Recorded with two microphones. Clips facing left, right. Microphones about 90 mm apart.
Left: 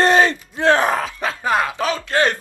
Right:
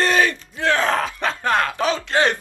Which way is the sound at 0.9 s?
5° left (ahead or behind).